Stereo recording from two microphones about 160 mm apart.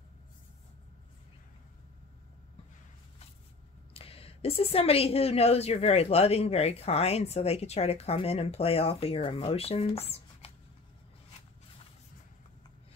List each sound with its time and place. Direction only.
3.9 s a woman's voice: 35° left (ahead or behind)